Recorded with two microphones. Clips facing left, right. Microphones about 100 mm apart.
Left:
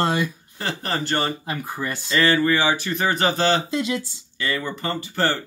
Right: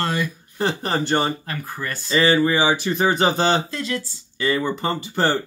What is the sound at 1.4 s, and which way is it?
Speech, 15° left (ahead or behind).